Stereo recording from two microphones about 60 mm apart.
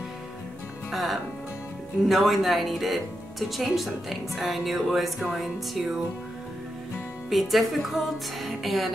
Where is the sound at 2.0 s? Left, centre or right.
Centre.